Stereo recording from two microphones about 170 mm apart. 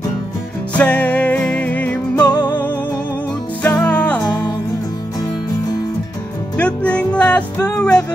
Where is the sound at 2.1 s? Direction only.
25° left (ahead or behind).